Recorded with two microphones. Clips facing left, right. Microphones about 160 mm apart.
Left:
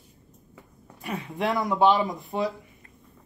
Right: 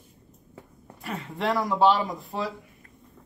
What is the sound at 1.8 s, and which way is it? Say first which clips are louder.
Speech: left 1 dB; 20° left (ahead or behind).